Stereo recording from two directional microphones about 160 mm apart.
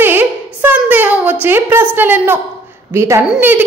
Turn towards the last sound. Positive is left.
turn(degrees=-15)  # may be behind; listen again after turning